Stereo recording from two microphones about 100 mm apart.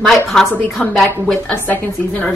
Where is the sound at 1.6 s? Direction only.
15° left (ahead or behind).